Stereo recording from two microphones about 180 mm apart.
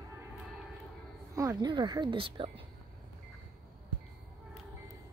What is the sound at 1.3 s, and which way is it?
A woman's voice, 15° right (ahead or behind).